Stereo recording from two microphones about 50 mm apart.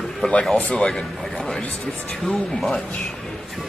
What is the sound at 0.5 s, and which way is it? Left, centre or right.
Speech, centre.